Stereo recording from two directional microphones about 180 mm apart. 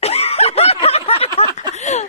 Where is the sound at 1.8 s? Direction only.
40° left (ahead or behind).